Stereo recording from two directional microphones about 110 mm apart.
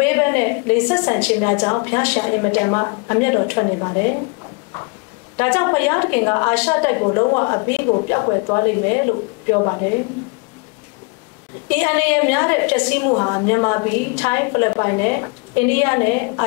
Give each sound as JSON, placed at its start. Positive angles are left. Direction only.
{"t": 0.0, "sound": "a woman's voice", "side_deg": 25}
{"t": 1.6, "sound": "a woman's voice", "side_deg": 35}
{"t": 5.4, "sound": "a woman's voice", "side_deg": 25}
{"t": 7.0, "sound": "a woman's voice", "side_deg": 35}
{"t": 11.7, "sound": "a woman's voice", "side_deg": 20}